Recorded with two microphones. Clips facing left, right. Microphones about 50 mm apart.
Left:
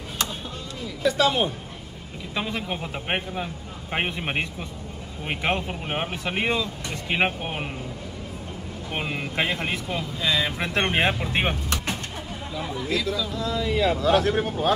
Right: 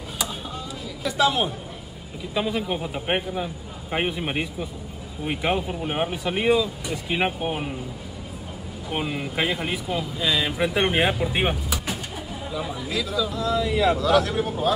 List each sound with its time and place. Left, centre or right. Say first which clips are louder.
1.0 s speech: left 1 dB; centre
2.3 s speech: right 4 dB; centre
5.4 s speech: right 1 dB; centre
5.9 s speech: right 2 dB; centre
7.1 s speech: even; centre
8.9 s speech: right 1 dB; centre
13.9 s speech: even; left